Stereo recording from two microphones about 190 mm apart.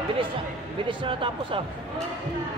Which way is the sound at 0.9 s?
25° right (ahead or behind).